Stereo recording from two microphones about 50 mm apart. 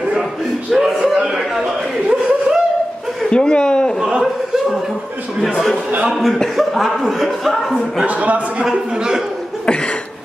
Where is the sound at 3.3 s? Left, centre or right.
Centre.